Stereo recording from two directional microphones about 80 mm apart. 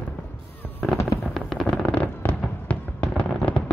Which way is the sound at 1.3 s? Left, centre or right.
Centre.